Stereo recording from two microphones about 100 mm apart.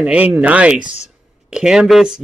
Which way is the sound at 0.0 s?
10° right (ahead or behind).